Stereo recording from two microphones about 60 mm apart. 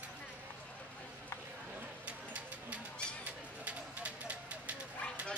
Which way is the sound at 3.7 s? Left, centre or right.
Right.